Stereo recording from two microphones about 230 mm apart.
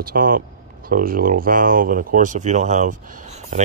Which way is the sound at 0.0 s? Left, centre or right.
Right.